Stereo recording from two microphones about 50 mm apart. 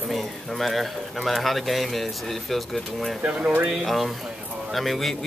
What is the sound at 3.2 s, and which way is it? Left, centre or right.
Speech, right.